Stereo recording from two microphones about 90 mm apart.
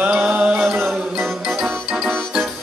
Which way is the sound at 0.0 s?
10° right (ahead or behind).